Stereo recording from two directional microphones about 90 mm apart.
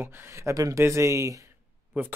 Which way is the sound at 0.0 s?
25° right (ahead or behind).